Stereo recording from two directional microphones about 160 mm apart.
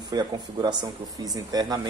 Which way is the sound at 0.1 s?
25° right (ahead or behind).